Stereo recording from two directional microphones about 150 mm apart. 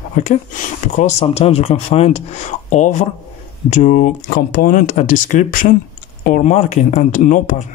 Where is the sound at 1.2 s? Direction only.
40° left (ahead or behind).